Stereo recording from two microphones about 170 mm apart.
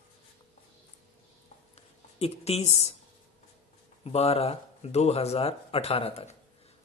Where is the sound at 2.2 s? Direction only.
40° left (ahead or behind).